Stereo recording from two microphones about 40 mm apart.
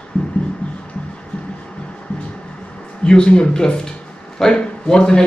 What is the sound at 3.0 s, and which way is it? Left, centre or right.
A man's voice, left.